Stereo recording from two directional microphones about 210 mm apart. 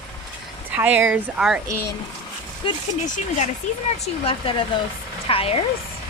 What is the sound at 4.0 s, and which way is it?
Speech, 25° left (ahead or behind).